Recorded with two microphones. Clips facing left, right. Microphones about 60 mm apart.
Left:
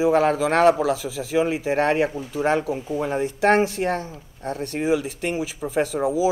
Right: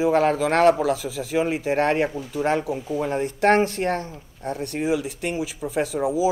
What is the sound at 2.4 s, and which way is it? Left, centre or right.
Speech, centre.